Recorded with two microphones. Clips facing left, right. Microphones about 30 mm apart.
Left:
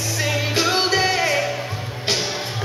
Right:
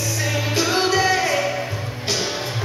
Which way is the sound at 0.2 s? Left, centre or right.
Left.